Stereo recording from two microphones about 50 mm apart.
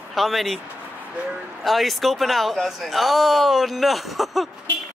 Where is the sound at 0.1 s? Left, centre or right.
Centre.